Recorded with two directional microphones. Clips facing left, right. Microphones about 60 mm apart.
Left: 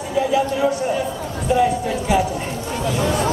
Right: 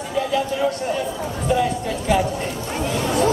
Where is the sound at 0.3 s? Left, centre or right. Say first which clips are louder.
Left 3 dB; centre.